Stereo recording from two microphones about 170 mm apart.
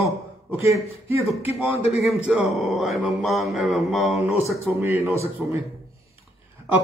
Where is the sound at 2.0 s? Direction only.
Centre (ahead or behind).